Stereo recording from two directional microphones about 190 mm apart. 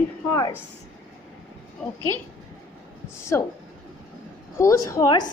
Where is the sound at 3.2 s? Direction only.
15° left (ahead or behind).